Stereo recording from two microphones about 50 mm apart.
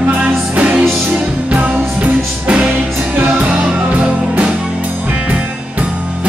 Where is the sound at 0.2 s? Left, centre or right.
Right.